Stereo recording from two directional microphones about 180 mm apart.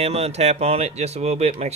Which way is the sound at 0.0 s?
35° right (ahead or behind).